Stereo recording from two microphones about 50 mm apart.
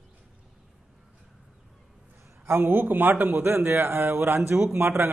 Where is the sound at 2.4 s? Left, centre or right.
Right.